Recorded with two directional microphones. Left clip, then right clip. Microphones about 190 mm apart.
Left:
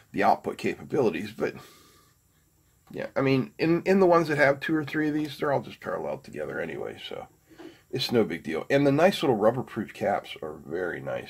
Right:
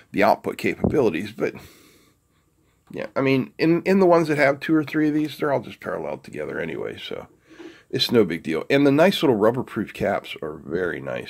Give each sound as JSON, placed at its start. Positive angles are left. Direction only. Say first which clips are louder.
{"t": 0.1, "sound": "speech", "louder": "right 4 dB", "side_deg": -40}
{"t": 2.9, "sound": "speech", "louder": "right 4 dB", "side_deg": -35}